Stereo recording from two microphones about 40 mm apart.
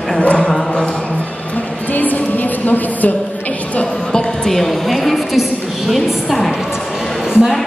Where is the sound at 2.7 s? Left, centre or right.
Left.